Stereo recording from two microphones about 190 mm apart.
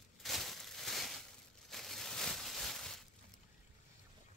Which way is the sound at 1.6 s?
Centre (ahead or behind).